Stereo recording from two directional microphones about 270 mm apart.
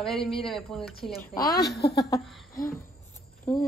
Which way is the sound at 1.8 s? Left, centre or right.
Left.